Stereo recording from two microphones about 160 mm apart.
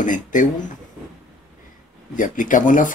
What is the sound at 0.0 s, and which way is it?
Speech, 55° left (ahead or behind).